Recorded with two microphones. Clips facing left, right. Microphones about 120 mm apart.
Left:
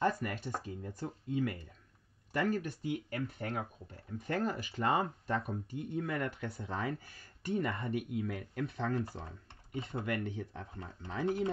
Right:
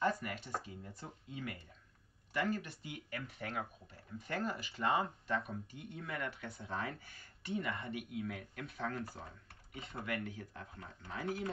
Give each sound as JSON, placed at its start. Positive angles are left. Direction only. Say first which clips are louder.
{"t": 0.0, "sound": "a sound", "louder": "left 3 dB", "side_deg": 45}
{"t": 0.6, "sound": "speech", "louder": "left 6 dB", "side_deg": 45}
{"t": 6.0, "sound": "speech", "louder": "left 6 dB", "side_deg": 30}
{"t": 7.9, "sound": "speech", "louder": "left 5 dB", "side_deg": 40}
{"t": 8.6, "sound": "speech", "louder": "left 5 dB", "side_deg": 25}